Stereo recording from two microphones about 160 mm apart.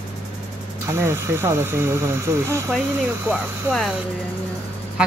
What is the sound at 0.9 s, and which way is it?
Speech, 15° right (ahead or behind).